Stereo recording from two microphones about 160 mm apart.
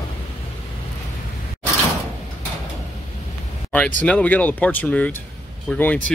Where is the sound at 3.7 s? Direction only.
10° left (ahead or behind).